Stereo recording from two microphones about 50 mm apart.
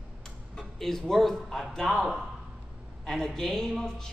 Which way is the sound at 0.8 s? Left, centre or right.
Centre.